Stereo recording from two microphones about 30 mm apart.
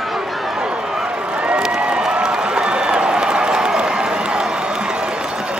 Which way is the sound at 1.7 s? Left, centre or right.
Right.